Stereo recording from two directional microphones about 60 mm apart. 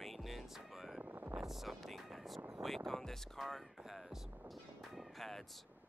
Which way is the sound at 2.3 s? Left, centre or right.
Right.